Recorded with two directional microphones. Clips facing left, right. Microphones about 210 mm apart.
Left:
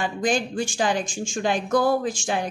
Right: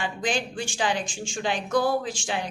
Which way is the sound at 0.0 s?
45° left (ahead or behind).